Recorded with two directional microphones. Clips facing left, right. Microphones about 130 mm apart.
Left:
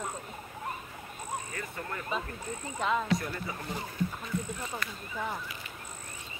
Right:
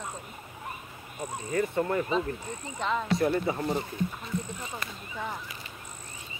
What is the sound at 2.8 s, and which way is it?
Speech, 5° left (ahead or behind).